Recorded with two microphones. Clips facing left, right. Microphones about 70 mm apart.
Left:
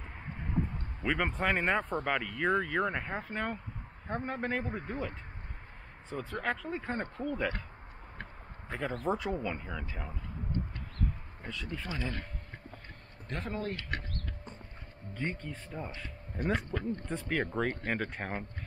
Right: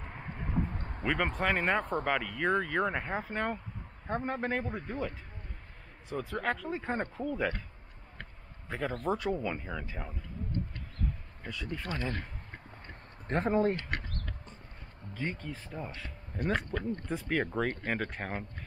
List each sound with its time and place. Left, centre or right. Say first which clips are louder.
0.0 s vehicle: right 2 dB; centre
0.7 s a sound: right 2 dB; right
1.0 s speech: right 1 dB; centre
6.0 s speech: right 2 dB; centre
8.6 s speech: right 1 dB; centre
11.9 s speech: right 2 dB; centre
13.3 s speech: right 9 dB; right
15.1 s speech: even; centre
16.5 s speech: right 1 dB; right
17.1 s speech: right 2 dB; centre